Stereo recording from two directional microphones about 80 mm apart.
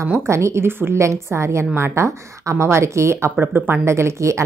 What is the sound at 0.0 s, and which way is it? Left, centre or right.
A woman's voice, right.